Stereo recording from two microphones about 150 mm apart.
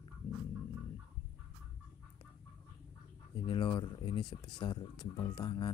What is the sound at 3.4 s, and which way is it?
Speech, 30° left (ahead or behind).